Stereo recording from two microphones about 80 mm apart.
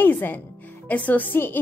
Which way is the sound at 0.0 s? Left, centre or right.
Left.